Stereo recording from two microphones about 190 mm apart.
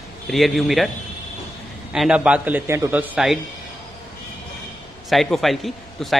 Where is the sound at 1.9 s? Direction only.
5° right (ahead or behind).